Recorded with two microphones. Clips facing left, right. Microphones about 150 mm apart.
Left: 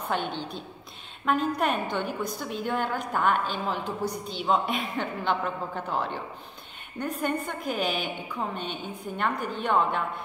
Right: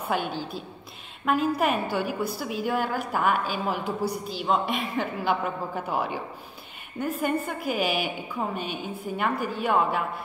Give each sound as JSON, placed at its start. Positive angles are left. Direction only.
{"t": 0.1, "sound": "a woman's voice", "side_deg": -5}